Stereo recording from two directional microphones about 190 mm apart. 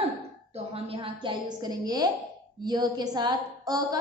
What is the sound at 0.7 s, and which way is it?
A woman's voice, 30° right (ahead or behind).